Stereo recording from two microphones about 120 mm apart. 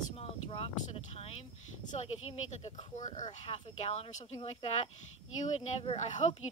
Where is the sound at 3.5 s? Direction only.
55° left (ahead or behind).